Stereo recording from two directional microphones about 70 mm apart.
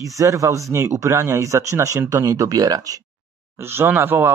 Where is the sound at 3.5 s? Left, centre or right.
Right.